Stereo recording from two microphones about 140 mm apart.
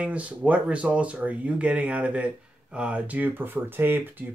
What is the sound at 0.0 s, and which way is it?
Speech, 10° right (ahead or behind).